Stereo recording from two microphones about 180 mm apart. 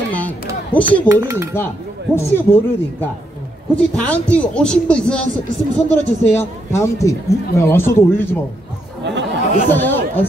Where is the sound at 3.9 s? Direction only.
5° left (ahead or behind).